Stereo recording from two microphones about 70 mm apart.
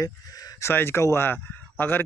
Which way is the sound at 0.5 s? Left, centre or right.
Left.